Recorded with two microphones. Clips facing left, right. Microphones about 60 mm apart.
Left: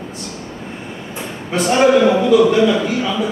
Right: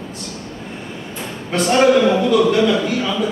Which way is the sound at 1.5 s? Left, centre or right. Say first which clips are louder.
Left 1 dB; centre.